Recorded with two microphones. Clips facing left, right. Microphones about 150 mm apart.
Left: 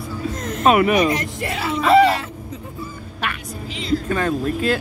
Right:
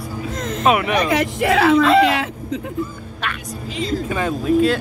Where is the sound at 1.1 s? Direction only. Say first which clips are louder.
Right 8 dB; 85° right.